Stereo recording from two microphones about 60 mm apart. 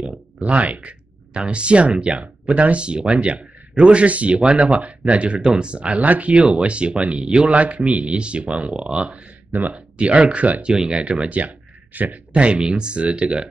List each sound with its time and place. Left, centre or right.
0.4 s speech: right